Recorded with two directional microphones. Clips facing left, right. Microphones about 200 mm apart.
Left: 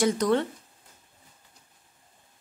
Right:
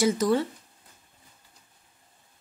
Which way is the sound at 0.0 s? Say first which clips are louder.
Even; 5° right (ahead or behind).